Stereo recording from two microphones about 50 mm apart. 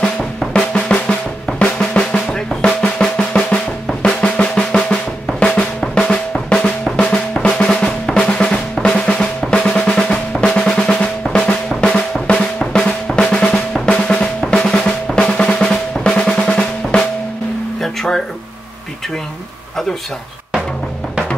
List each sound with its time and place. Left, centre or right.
0.5 s drum: left
3.0 s drum: centre
3.4 s drum: left